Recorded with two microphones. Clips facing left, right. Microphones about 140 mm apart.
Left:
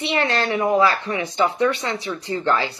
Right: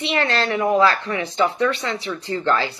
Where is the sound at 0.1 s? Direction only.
20° left (ahead or behind).